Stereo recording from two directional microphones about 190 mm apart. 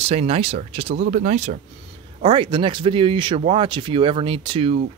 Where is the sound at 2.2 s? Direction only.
25° right (ahead or behind).